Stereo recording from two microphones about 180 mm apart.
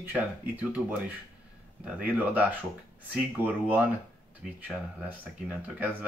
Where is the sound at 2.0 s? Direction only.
10° right (ahead or behind).